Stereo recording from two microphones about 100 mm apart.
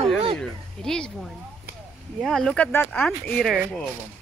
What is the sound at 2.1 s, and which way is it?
Speech, 5° left (ahead or behind).